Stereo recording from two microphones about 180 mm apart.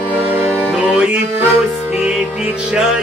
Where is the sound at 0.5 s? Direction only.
5° left (ahead or behind).